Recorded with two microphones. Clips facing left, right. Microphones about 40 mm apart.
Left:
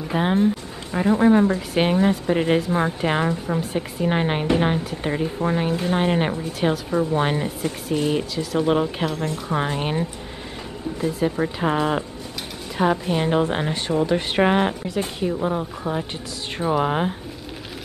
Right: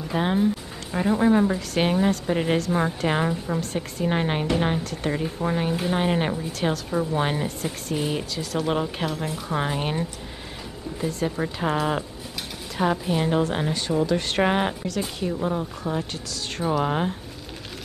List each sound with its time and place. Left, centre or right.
0.1 s a woman's voice: centre
14.4 s a woman's voice: centre